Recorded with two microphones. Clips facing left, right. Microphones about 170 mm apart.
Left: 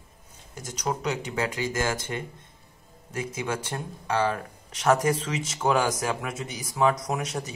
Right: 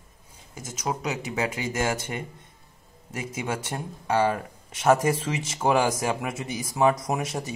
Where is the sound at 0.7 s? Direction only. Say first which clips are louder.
Left 1 dB; 5° right (ahead or behind).